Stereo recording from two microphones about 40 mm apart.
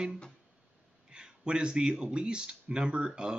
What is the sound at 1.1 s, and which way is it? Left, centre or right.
Speech, right.